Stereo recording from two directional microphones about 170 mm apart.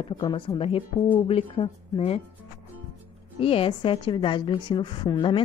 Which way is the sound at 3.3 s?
35° left (ahead or behind).